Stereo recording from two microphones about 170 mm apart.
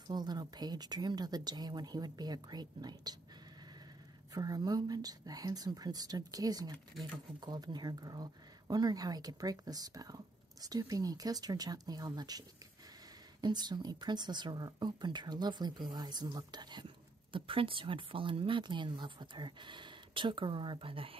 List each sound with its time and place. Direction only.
0.1 s a woman's voice: 25° right (ahead or behind)
4.3 s a woman's voice: 25° right (ahead or behind)